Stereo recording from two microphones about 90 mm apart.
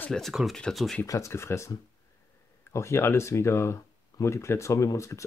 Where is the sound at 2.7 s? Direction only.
30° left (ahead or behind).